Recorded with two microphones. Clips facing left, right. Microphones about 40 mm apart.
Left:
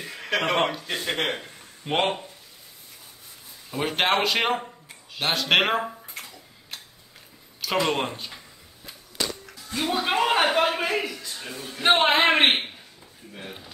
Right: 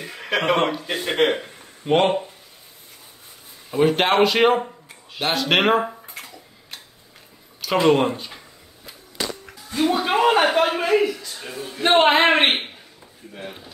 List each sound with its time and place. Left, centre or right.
0.0 s a sound: centre
0.7 s speech: centre
1.9 s a man's voice: centre
3.7 s a man's voice: centre
6.2 s a sound: centre
7.8 s a man's voice: centre
9.8 s a man's voice: centre